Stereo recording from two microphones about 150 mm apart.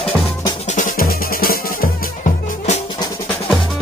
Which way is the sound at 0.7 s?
60° left (ahead or behind).